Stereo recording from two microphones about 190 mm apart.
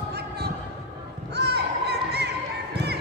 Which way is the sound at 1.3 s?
60° right (ahead or behind).